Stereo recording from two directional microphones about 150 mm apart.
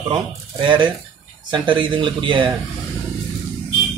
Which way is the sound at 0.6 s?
30° right (ahead or behind).